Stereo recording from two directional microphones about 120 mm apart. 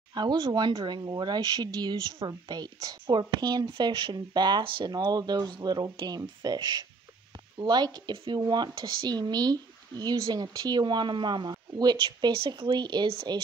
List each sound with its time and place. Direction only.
0.1 s speech: 35° right (ahead or behind)